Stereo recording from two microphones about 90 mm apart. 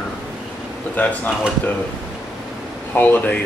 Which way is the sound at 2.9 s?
20° left (ahead or behind).